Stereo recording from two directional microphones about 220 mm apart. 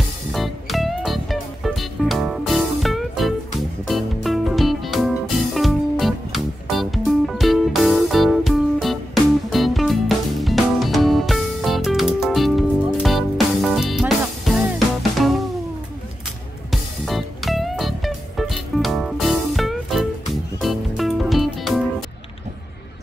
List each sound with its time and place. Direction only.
0.3 s music: centre (ahead or behind)
16.7 s music: centre (ahead or behind)